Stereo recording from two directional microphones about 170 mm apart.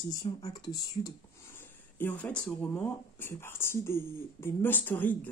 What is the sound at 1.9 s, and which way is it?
Speech, 10° left (ahead or behind).